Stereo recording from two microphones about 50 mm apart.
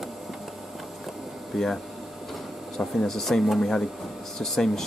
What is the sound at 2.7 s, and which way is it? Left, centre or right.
Speech, centre.